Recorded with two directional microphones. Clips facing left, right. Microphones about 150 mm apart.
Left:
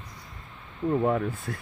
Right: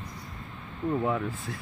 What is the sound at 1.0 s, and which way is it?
Speech, 50° left (ahead or behind).